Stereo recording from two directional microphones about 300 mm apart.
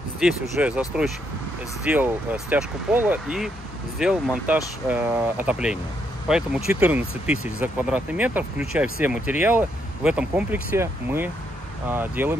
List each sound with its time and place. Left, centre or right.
0.2 s speech: centre